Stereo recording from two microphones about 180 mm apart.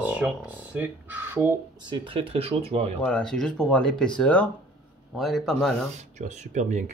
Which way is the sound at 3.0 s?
5° left (ahead or behind).